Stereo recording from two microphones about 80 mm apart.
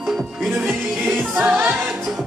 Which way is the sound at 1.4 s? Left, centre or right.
Right.